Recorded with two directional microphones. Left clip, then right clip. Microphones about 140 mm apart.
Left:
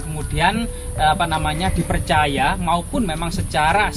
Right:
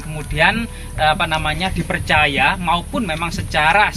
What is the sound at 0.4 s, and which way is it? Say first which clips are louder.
A man's voice: right 3 dB; 25° left (ahead or behind).